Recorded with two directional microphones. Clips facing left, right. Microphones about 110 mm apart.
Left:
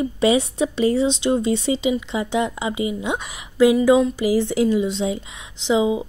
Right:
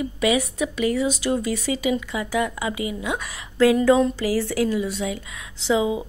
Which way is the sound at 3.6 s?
15° left (ahead or behind).